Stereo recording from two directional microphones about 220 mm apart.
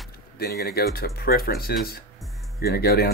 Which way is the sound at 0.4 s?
45° left (ahead or behind).